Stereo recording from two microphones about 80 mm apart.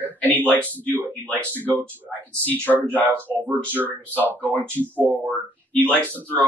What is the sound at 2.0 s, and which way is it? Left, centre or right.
Speech, left.